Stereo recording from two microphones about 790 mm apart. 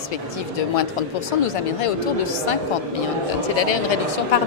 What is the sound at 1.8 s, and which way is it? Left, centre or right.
Speech, left.